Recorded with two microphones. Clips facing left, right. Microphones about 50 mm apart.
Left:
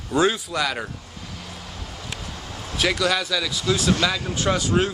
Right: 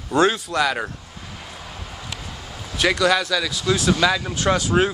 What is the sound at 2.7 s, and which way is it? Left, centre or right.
Speech, centre.